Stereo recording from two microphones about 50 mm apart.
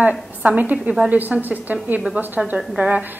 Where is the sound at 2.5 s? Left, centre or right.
Centre.